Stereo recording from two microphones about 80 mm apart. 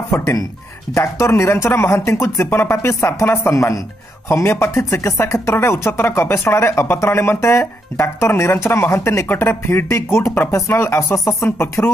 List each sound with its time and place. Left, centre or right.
0.1 s speech: left